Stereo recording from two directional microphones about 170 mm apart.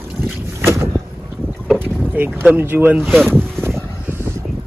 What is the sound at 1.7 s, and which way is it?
Speech, 10° right (ahead or behind).